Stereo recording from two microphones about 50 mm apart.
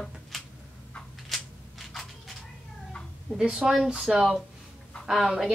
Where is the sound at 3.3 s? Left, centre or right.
Centre.